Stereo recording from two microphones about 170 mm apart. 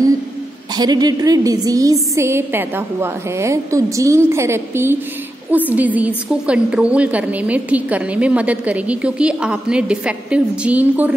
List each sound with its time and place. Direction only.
0.7 s a woman's voice: 25° right (ahead or behind)